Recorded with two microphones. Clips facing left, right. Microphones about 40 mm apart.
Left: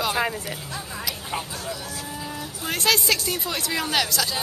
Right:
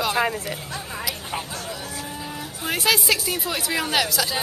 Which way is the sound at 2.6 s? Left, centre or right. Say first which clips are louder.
Right 1 dB; centre.